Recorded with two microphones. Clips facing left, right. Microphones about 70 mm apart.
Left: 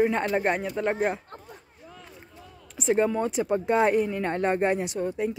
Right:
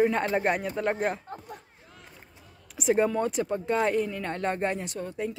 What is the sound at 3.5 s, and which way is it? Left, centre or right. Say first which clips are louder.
Speech: left 7 dB; left.